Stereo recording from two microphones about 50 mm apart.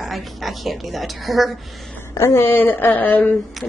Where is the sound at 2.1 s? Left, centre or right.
Left.